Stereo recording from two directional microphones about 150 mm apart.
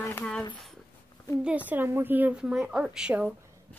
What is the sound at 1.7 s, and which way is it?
Speech, 15° right (ahead or behind).